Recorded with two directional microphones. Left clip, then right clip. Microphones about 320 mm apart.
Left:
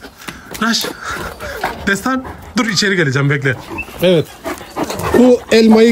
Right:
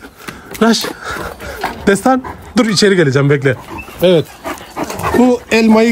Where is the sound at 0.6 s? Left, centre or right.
Centre.